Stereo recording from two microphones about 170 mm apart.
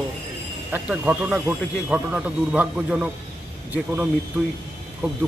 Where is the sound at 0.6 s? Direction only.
10° right (ahead or behind).